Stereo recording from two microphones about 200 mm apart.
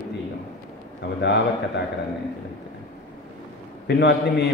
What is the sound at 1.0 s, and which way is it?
Speech, 60° left (ahead or behind).